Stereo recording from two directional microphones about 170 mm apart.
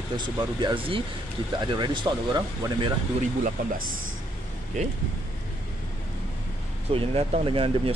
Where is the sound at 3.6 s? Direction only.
55° right (ahead or behind).